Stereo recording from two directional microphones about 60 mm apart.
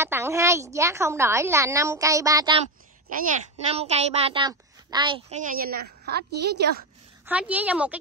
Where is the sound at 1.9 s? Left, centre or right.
Right.